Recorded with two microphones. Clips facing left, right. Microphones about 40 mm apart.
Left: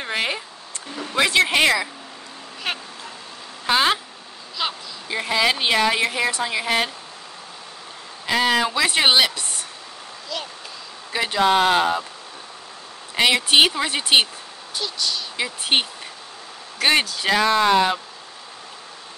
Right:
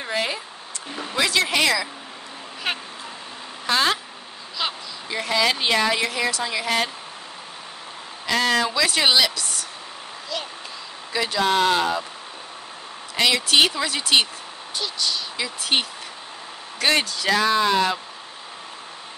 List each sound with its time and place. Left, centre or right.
0.0 s a sound: left
1.1 s speech: left
2.7 s a sound: centre
3.6 s speech: centre
4.6 s a sound: centre
5.1 s a woman's voice: centre
8.3 s speech: centre; by 9.7 s left
10.3 s speech: centre
11.1 s speech: left
13.1 s speech: left
14.8 s speech: centre
15.3 s speech: left
16.8 s a woman's voice: centre
17.6 s speech: left